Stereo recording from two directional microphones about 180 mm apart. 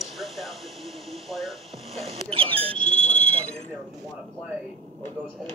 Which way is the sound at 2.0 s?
30° right (ahead or behind).